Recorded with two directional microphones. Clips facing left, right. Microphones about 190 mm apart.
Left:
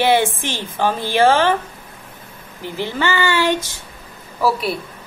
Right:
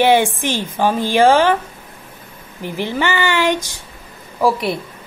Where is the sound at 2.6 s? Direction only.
15° right (ahead or behind).